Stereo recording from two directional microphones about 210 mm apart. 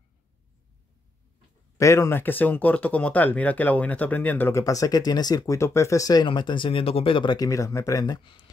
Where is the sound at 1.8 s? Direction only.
15° left (ahead or behind).